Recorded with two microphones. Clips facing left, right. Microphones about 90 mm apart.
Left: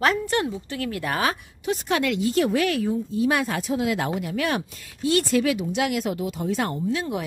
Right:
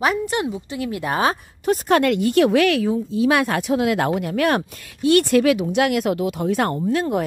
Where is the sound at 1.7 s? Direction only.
50° right (ahead or behind).